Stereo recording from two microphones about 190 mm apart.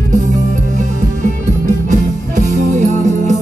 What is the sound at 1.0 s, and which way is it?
Music, 40° right (ahead or behind).